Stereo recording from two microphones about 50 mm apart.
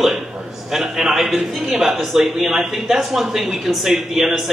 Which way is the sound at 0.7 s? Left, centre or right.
Centre.